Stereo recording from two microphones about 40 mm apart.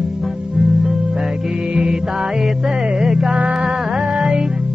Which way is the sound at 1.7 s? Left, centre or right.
Centre.